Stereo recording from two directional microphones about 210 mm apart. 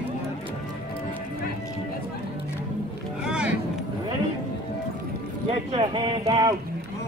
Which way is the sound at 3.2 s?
5° right (ahead or behind).